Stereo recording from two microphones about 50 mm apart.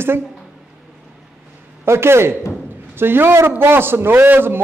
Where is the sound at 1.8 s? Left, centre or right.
Right.